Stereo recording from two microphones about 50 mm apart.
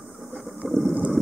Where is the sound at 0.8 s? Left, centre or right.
Right.